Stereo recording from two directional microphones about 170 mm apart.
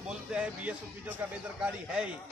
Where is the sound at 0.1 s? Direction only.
5° right (ahead or behind).